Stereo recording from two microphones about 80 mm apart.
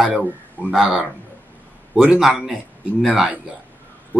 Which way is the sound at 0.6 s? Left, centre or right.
Left.